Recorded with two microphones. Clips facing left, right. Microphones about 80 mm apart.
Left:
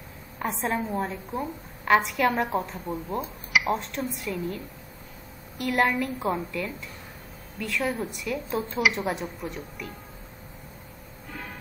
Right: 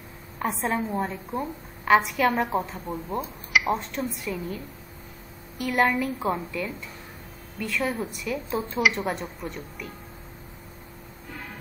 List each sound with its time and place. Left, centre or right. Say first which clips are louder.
0.4 s a woman's voice: right 1 dB; centre
5.6 s a woman's voice: right 1 dB; centre